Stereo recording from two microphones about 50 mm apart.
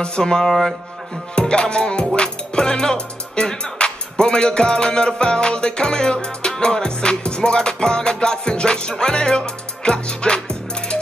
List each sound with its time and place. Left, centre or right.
0.0 s music: centre
1.3 s music: centre